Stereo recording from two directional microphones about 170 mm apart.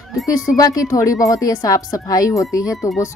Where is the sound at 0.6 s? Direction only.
20° left (ahead or behind).